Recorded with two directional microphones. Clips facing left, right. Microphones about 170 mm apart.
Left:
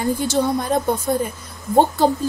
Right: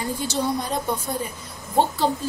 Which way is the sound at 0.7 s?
50° left (ahead or behind).